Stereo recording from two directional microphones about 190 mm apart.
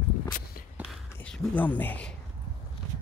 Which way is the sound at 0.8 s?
Centre (ahead or behind).